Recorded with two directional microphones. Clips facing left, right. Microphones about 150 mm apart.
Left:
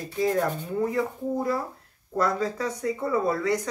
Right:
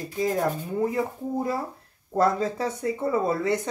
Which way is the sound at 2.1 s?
25° right (ahead or behind).